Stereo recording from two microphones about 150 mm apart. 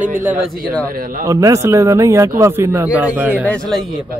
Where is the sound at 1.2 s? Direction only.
20° right (ahead or behind).